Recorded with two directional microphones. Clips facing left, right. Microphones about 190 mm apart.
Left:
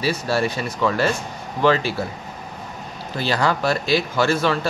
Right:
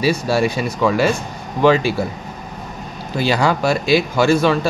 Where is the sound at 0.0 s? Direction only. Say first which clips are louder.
Right 4 dB; 15° right (ahead or behind).